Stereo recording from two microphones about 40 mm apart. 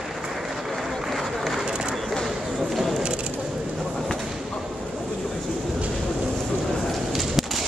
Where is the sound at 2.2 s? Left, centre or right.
Centre.